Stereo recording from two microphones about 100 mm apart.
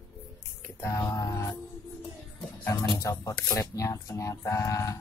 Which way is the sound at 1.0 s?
30° left (ahead or behind).